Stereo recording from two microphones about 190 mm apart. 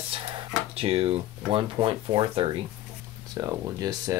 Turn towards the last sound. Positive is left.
turn(degrees=-20)  # may be behind; listen again after turning